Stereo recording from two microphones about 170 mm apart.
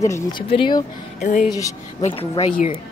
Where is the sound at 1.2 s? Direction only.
50° left (ahead or behind).